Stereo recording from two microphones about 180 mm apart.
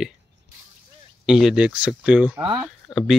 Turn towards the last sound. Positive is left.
turn(degrees=0)  # may be behind; listen again after turning